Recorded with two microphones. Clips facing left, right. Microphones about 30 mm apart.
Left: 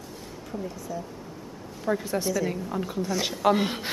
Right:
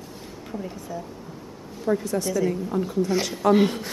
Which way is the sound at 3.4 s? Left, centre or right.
Left.